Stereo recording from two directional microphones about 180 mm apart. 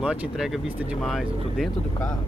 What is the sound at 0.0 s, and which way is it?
Speech, 5° right (ahead or behind).